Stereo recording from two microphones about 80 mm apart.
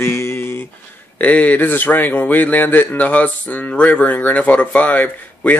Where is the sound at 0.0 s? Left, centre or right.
Left.